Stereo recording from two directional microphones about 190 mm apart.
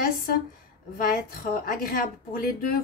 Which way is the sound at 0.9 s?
50° left (ahead or behind).